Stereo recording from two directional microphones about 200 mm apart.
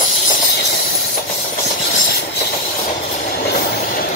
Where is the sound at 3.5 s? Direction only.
45° left (ahead or behind).